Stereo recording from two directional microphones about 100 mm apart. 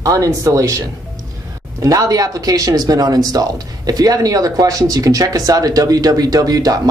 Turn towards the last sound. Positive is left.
turn(degrees=-35)  # may be behind; listen again after turning